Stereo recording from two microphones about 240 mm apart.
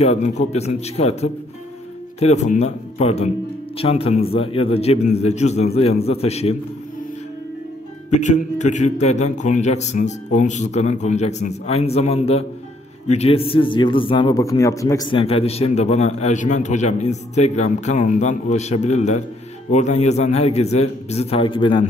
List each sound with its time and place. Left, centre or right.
0.0 s a man's voice: left
8.1 s a man's voice: left